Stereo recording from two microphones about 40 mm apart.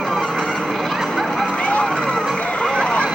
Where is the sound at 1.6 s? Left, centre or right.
Left.